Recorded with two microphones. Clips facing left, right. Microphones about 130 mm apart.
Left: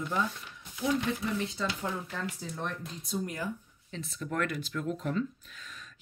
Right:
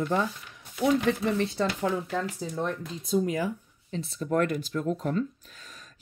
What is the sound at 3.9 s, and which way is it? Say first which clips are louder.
Speech: right 8 dB; 30° right (ahead or behind).